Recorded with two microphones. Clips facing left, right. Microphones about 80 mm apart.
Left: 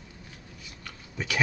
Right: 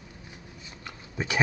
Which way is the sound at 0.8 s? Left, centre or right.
Right.